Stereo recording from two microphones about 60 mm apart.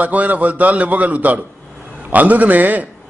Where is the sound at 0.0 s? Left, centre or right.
Right.